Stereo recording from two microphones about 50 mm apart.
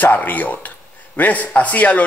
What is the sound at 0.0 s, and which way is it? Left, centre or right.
A man's voice, left.